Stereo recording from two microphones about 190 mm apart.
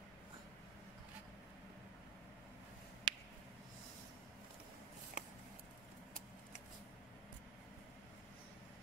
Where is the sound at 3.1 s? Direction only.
25° right (ahead or behind).